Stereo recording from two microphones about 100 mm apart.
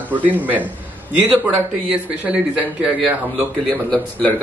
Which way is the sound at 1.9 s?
10° right (ahead or behind).